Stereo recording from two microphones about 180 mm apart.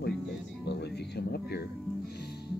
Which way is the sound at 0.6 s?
70° left (ahead or behind).